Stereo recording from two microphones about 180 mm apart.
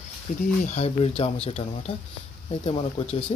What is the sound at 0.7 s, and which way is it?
Speech, 35° left (ahead or behind).